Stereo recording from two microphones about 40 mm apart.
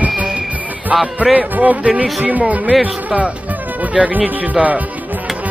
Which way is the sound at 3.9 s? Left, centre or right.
Right.